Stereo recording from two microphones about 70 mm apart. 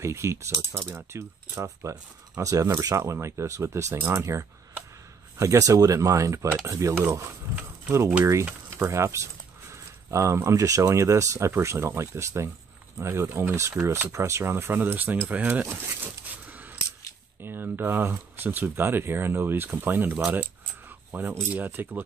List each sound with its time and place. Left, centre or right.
0.0 s speech: right
0.9 s speech: right
13.3 s speech: right
14.1 s speech: right
16.3 s scissors: right
17.4 s speech: right